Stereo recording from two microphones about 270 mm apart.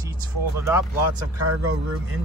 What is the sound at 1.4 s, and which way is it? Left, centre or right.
Speech, right.